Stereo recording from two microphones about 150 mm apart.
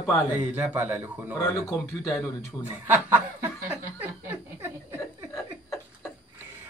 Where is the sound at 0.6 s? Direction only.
15° right (ahead or behind).